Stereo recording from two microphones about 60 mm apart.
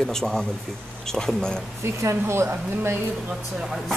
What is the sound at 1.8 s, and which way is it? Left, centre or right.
Speech, right.